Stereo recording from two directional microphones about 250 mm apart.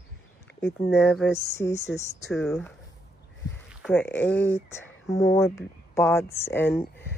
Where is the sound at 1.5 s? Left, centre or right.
Centre.